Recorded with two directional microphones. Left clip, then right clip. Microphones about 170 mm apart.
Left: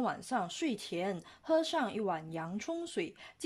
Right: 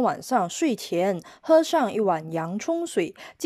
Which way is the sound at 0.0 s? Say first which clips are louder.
Right 12 dB; 40° right (ahead or behind).